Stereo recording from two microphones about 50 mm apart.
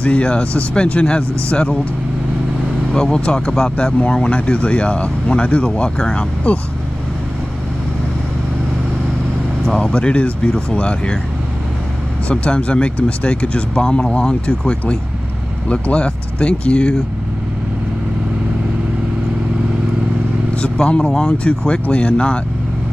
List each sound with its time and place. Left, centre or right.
0.0 s speech: left
2.9 s speech: centre
9.9 s speech: left
12.3 s speech: left
20.5 s speech: left